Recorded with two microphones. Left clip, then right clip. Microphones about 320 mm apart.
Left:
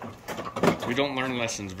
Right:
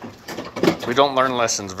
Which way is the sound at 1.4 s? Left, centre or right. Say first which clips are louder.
Right 9 dB; centre.